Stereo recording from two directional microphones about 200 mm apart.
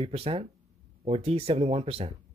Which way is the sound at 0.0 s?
30° right (ahead or behind).